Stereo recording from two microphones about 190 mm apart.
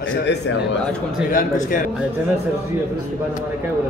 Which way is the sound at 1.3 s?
45° left (ahead or behind).